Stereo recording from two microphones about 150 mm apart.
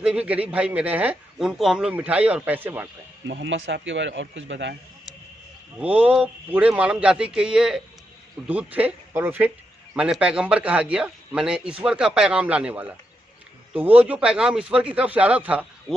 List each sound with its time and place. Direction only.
0.0 s a man's voice: 10° right (ahead or behind)
5.8 s a man's voice: 10° right (ahead or behind)